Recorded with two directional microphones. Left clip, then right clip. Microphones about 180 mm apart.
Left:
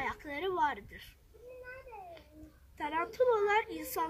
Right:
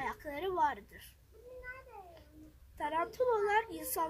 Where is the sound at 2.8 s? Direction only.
5° right (ahead or behind).